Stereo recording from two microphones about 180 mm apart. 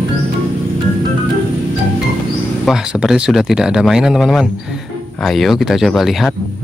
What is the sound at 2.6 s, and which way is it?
Speech, 5° right (ahead or behind).